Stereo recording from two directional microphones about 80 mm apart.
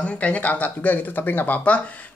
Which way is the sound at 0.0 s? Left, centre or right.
Centre.